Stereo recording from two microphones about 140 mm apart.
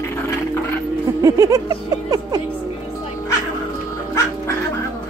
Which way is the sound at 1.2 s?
25° right (ahead or behind).